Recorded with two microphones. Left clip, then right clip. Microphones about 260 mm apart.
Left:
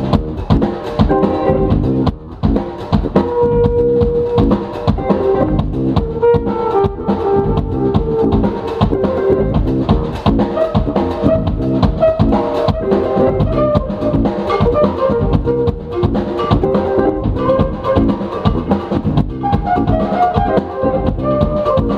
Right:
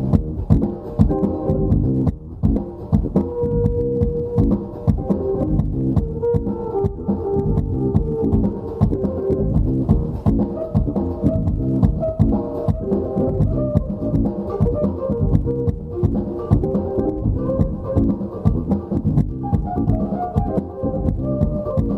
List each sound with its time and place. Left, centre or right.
0.1 s music: centre